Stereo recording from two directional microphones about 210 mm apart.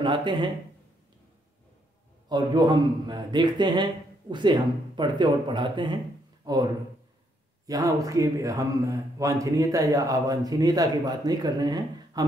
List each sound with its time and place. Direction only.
0.0 s a man's voice: 20° right (ahead or behind)
2.2 s a man's voice: 20° right (ahead or behind)